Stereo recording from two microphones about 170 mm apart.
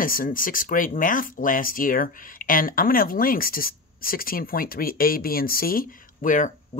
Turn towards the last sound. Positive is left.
turn(degrees=50)  # may be behind; listen again after turning